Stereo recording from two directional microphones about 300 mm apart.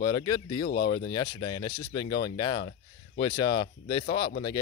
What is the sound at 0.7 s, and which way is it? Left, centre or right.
Speech, left.